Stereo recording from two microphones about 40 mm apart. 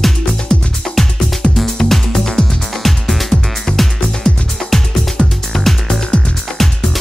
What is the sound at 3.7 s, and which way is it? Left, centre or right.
Music, centre.